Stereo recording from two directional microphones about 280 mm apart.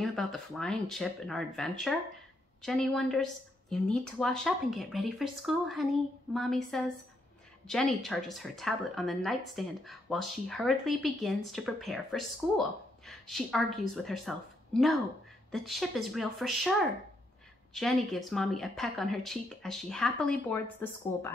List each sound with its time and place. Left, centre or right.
0.0 s speech: centre
17.7 s speech: centre